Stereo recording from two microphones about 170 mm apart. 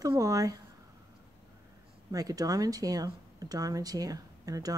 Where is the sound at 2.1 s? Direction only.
20° right (ahead or behind).